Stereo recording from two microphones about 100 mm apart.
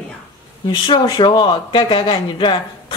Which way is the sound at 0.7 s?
50° left (ahead or behind).